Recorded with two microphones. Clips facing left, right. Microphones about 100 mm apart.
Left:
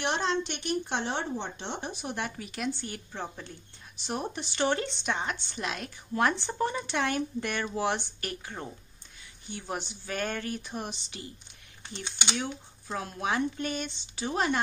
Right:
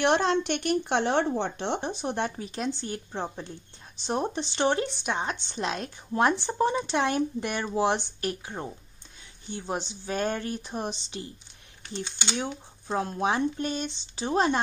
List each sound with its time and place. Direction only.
0.0 s speech: 60° right (ahead or behind)
1.8 s speech: 30° right (ahead or behind)
12.0 s speech: 20° left (ahead or behind)
12.4 s speech: 30° right (ahead or behind)